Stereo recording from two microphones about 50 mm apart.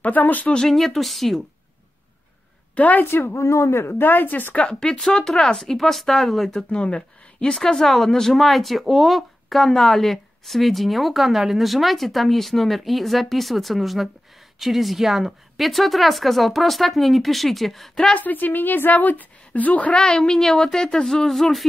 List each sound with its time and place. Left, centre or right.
0.0 s a woman's voice: left
0.5 s speech: centre
2.7 s a woman's voice: left
3.1 s a woman's voice: left
3.3 s speech: left
4.0 s a woman's voice: left
4.6 s speech: centre
6.7 s speech: centre
18.1 s a woman's voice: left
20.0 s speech: centre